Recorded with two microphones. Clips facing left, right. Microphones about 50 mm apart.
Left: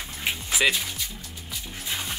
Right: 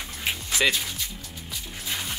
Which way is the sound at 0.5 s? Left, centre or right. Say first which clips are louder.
Left 1 dB; centre.